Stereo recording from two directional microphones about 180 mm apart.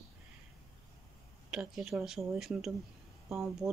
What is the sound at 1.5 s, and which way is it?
Speech, 5° right (ahead or behind).